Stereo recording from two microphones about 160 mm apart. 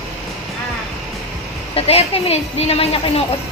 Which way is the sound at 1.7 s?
40° left (ahead or behind).